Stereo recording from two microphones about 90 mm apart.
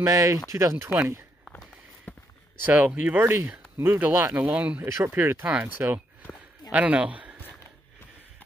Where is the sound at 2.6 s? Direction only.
20° right (ahead or behind).